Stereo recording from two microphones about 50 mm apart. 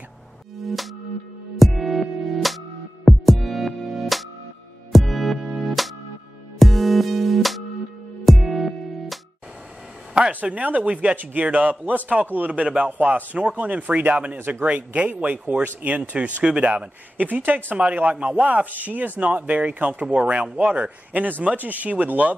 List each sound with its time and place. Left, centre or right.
1.6 s music: centre
10.4 s a man's voice: right
17.8 s a man's voice: right